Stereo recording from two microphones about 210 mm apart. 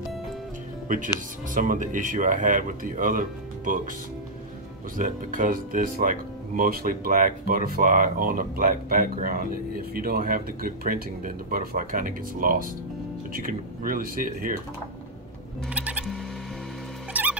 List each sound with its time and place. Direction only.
0.8 s speech: 40° right (ahead or behind)
4.9 s speech: 40° right (ahead or behind)
15.7 s music: 5° right (ahead or behind)
17.1 s rodents: 5° right (ahead or behind)